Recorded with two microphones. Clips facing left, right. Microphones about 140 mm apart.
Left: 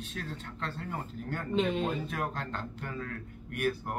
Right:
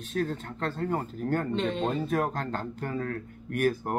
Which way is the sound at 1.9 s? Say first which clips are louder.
Right 6 dB; 40° right (ahead or behind).